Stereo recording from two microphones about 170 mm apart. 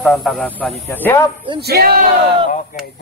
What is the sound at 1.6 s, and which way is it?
Speech, 65° right (ahead or behind).